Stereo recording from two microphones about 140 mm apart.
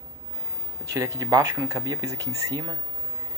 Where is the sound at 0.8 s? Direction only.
25° right (ahead or behind).